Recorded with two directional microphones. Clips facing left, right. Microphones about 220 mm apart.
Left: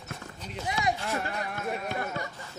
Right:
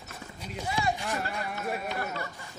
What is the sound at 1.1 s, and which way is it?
Music, 5° right (ahead or behind).